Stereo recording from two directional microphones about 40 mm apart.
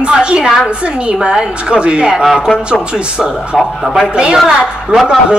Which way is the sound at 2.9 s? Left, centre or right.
Right.